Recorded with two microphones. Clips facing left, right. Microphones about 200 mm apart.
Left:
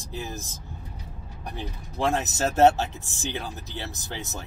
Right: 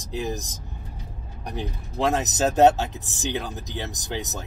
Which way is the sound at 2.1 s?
15° right (ahead or behind).